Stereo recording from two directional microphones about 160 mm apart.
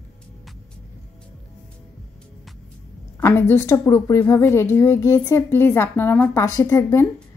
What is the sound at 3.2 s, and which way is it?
A woman's voice, 15° left (ahead or behind).